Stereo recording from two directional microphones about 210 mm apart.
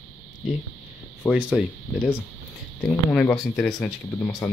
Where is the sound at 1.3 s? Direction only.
5° right (ahead or behind).